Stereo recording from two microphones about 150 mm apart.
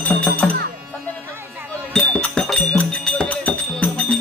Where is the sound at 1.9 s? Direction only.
5° left (ahead or behind).